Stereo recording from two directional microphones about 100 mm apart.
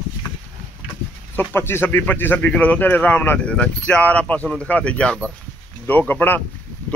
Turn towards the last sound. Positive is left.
turn(degrees=20)  # may be behind; listen again after turning